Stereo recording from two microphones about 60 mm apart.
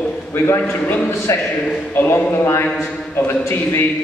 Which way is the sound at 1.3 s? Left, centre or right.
Left.